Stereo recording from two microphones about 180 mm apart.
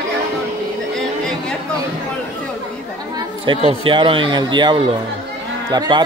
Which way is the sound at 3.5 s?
30° right (ahead or behind).